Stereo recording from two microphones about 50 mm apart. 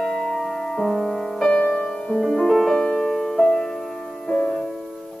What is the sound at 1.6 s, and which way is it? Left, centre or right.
Music, centre.